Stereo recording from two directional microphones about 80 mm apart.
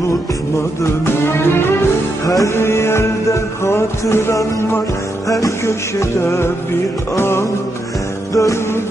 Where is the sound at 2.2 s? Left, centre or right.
Left.